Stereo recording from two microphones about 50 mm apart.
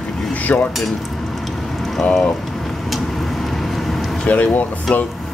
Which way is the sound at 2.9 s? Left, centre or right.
Centre.